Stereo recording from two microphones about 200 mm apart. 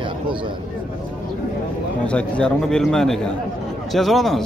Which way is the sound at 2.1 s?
5° left (ahead or behind).